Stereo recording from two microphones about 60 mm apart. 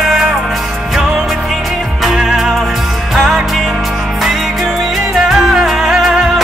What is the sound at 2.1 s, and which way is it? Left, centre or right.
Music, centre.